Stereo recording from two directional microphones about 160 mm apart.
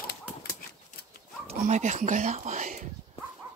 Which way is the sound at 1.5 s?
45° right (ahead or behind).